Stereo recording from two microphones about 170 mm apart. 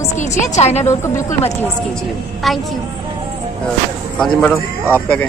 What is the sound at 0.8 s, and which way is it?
Speech, 15° left (ahead or behind).